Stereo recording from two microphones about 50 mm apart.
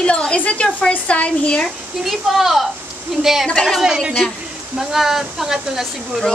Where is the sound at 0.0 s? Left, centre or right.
Centre.